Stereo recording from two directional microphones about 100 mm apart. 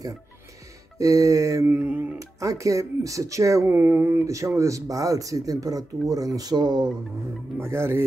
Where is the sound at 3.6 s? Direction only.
20° right (ahead or behind); by 6.9 s 45° right (ahead or behind).